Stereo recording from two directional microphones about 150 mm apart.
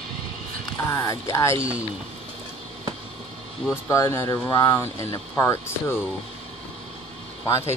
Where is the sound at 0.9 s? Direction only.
20° left (ahead or behind).